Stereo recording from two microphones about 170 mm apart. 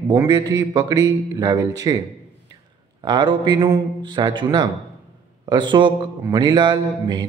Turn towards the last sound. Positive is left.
turn(degrees=-25)  # may be behind; listen again after turning